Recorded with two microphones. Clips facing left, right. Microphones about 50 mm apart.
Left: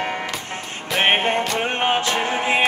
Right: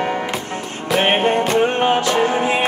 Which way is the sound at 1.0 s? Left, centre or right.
Left.